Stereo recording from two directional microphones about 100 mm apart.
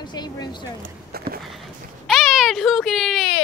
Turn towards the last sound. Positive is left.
turn(degrees=0)  # may be behind; listen again after turning